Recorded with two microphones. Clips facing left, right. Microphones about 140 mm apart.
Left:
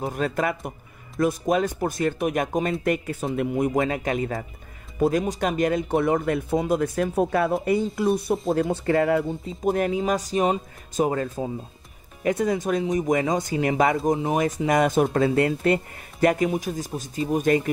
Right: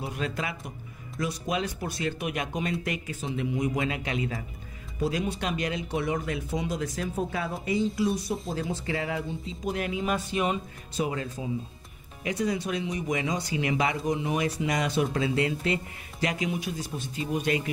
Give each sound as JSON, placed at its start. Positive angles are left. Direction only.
{"t": 0.0, "sound": "speech", "side_deg": 45}